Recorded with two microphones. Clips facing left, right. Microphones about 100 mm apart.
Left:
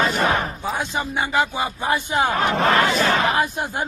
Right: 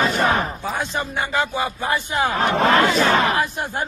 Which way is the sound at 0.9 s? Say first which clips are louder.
Left 3 dB; 15° left (ahead or behind).